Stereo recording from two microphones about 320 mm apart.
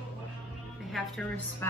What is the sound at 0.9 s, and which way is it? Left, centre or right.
Speech, centre.